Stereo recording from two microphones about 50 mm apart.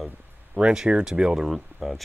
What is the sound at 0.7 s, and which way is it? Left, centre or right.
Speech, right.